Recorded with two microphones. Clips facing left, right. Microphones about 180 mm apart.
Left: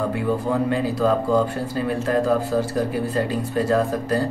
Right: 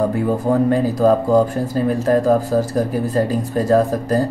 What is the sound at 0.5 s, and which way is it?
Speech, 40° right (ahead or behind).